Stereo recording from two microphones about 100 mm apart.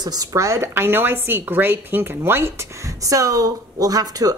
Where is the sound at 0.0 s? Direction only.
40° right (ahead or behind); by 2.5 s 20° right (ahead or behind).